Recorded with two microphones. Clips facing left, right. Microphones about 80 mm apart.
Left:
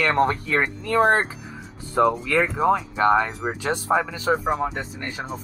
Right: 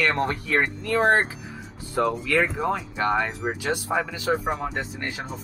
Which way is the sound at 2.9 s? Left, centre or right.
Left.